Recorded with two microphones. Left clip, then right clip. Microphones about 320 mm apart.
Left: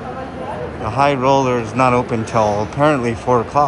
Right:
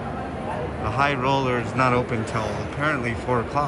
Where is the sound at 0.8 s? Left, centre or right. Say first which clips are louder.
Left 8 dB; centre.